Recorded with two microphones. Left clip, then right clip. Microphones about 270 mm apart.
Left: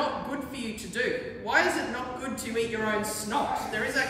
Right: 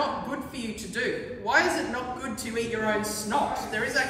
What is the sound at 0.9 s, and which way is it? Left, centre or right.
A man's voice, centre.